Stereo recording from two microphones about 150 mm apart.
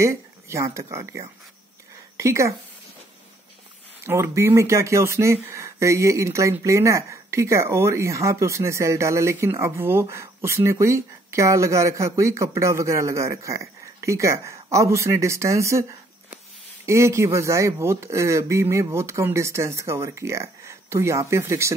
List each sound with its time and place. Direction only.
0.0 s speech: 20° right (ahead or behind)
4.0 s speech: 15° right (ahead or behind)
16.8 s speech: 20° right (ahead or behind)